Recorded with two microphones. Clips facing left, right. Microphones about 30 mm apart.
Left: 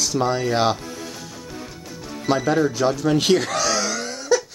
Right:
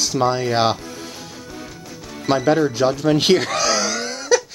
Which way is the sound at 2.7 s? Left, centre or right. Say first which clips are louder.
Right 2 dB; right.